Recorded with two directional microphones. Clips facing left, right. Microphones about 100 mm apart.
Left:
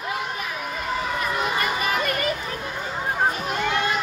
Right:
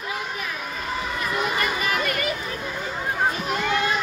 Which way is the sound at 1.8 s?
30° left (ahead or behind).